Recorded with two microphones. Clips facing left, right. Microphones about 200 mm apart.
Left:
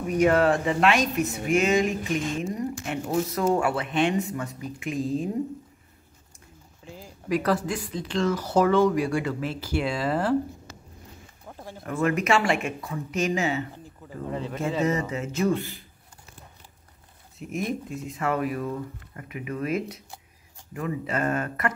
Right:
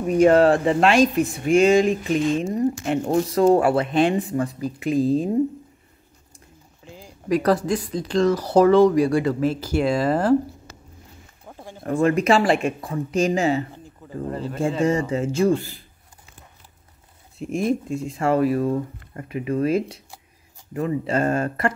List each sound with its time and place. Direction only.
0.1 s speech: 30° right (ahead or behind)
7.2 s speech: 40° right (ahead or behind)
11.4 s a sound: 5° right (ahead or behind)
11.8 s speech: 30° right (ahead or behind)
14.8 s speech: 30° right (ahead or behind)
17.4 s speech: 30° right (ahead or behind)